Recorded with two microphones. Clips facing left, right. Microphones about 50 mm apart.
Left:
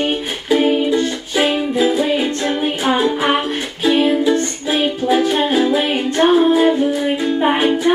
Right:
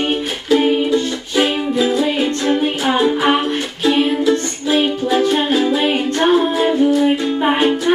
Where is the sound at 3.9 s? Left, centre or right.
Centre.